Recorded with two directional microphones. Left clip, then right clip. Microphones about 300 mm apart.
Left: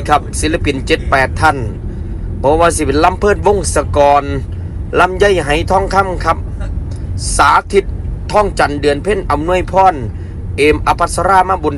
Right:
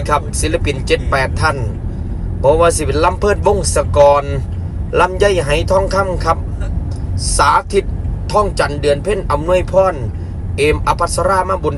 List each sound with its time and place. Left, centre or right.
0.0 s speech: centre